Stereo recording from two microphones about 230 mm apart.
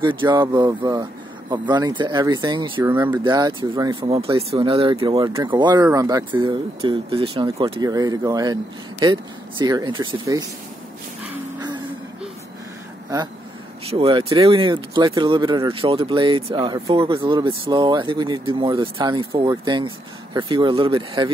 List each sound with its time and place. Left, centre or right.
0.0 s speech: right
2.9 s speech: centre
4.1 s speech: right
13.8 s speech: right